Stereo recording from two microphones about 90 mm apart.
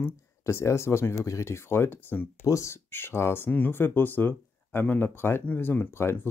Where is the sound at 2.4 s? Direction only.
35° left (ahead or behind).